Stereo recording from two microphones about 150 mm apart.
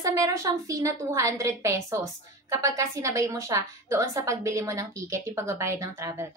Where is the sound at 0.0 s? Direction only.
20° right (ahead or behind).